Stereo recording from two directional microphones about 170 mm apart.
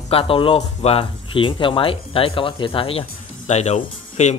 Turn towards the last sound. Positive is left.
turn(degrees=40)  # may be behind; listen again after turning